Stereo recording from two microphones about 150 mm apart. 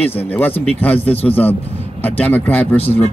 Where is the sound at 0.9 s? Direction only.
40° left (ahead or behind).